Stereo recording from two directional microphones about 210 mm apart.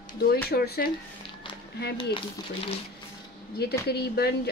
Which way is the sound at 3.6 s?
50° left (ahead or behind).